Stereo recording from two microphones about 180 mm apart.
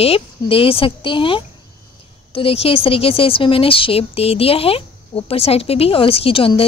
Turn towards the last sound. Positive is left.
turn(degrees=30)  # may be behind; listen again after turning